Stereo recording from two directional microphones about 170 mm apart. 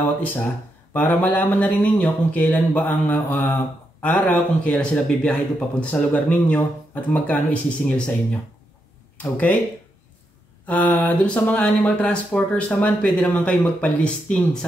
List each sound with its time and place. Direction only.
0.0 s speech: 10° left (ahead or behind)
10.7 s speech: 10° left (ahead or behind)